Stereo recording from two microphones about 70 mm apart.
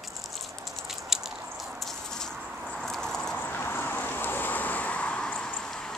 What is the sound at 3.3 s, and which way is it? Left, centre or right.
Vehicle, left.